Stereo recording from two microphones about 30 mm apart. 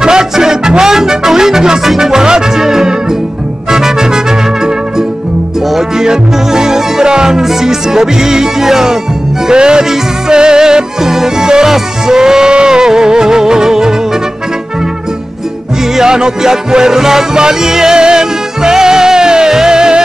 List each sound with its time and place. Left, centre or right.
0.0 s music: right
5.8 s music: right
9.5 s music: right
16.0 s music: right